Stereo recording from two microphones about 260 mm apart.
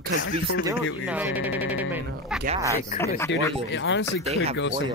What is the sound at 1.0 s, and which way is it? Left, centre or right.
Speech, centre.